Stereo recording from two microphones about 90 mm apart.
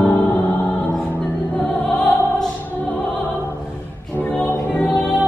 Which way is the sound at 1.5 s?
15° left (ahead or behind).